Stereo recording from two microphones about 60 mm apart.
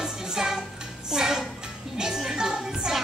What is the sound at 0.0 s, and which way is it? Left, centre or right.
Music, centre.